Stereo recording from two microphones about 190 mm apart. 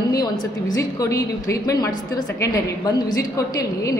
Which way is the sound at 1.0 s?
15° left (ahead or behind).